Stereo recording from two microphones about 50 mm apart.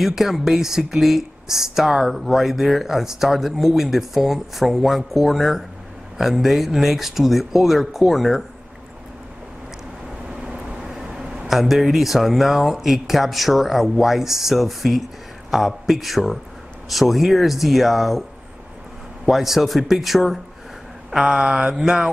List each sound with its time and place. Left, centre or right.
0.0 s speech: centre
10.3 s vehicle: centre
11.3 s speech: centre
19.2 s speech: centre
21.1 s mantra: centre